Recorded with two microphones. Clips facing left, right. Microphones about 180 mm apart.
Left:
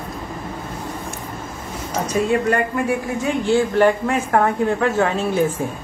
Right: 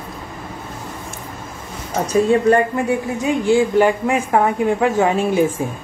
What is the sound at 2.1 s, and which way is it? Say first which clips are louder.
Speech: right 5 dB; 25° right (ahead or behind).